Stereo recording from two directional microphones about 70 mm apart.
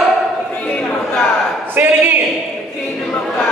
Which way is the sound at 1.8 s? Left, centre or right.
Right.